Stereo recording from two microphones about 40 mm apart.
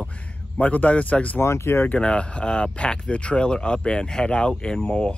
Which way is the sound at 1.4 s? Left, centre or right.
Left.